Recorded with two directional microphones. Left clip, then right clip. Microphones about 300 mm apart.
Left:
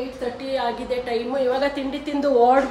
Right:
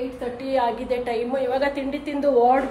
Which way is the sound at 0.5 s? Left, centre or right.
Centre.